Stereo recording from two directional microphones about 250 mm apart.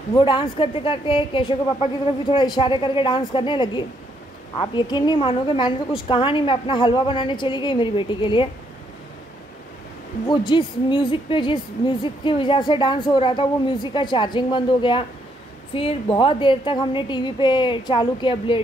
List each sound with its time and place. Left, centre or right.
0.1 s a woman's voice: centre
10.2 s a woman's voice: centre